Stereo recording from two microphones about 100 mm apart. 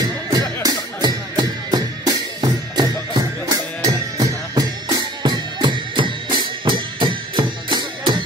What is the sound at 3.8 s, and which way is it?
Music, 40° right (ahead or behind).